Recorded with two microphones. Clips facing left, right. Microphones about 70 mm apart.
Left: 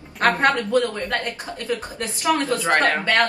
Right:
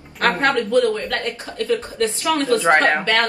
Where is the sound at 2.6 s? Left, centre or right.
Right.